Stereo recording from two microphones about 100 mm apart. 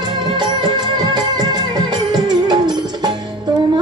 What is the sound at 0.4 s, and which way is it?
Music, 50° right (ahead or behind).